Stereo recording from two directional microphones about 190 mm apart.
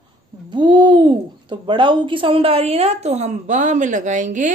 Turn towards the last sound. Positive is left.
turn(degrees=-40)  # may be behind; listen again after turning